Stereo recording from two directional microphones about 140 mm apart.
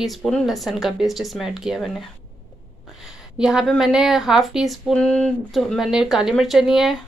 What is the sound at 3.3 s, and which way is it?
Speech, 5° right (ahead or behind).